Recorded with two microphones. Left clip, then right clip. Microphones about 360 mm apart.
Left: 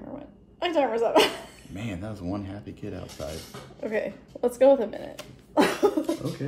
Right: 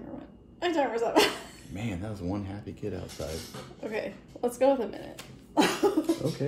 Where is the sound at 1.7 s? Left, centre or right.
Centre.